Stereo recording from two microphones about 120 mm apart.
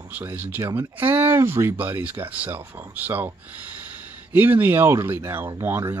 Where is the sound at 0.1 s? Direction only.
15° right (ahead or behind).